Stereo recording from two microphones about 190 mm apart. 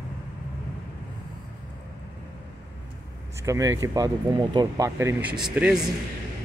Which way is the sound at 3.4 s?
15° right (ahead or behind).